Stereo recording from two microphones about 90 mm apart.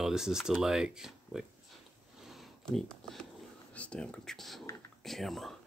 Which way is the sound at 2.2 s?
Centre (ahead or behind).